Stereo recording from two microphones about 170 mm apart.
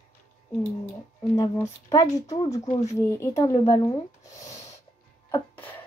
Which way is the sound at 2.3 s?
20° left (ahead or behind).